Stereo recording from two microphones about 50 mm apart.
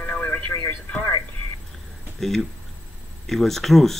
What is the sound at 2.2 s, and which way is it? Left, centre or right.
Speech, centre.